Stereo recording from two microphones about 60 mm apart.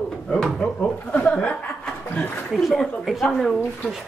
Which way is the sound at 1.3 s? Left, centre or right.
Centre.